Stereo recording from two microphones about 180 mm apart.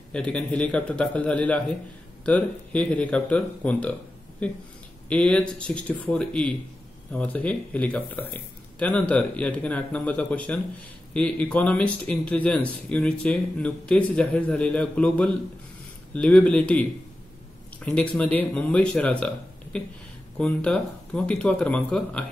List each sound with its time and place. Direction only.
0.1 s speech: 5° left (ahead or behind)